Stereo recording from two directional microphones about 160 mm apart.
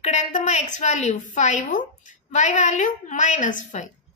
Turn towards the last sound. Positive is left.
turn(degrees=50)  # may be behind; listen again after turning